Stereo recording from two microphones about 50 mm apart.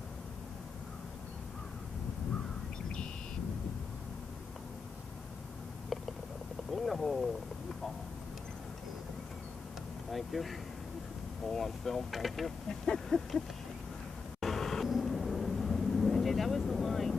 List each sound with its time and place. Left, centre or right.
6.7 s a sound: centre
10.1 s speech: centre
11.5 s speech: centre
14.4 s vehicle: centre